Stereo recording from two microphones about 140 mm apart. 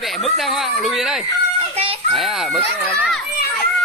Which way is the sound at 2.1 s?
Centre (ahead or behind).